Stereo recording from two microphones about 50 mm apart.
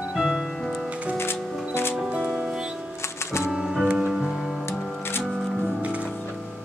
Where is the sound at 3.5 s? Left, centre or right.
Centre.